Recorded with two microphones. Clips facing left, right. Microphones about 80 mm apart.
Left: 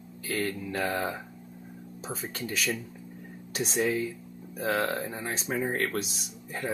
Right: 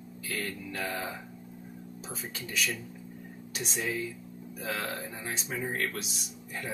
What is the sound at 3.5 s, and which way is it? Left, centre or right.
Speech, left.